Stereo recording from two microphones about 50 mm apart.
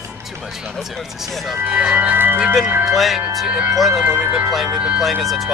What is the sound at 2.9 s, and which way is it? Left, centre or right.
Speech, centre.